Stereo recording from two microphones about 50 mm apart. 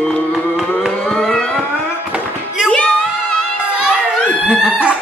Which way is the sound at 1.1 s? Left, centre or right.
Centre.